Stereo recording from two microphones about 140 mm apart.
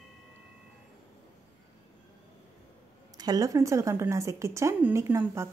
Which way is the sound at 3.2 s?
25° right (ahead or behind).